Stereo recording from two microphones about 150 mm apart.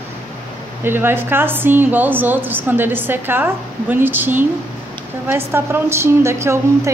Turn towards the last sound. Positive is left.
turn(degrees=-20)  # may be behind; listen again after turning